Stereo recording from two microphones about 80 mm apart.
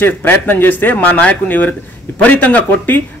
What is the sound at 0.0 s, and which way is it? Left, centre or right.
A man's voice, left.